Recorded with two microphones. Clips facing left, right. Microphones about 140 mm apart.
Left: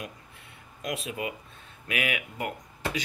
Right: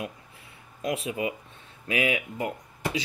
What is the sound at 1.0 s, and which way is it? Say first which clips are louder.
A man's voice: right 4 dB; 25° right (ahead or behind).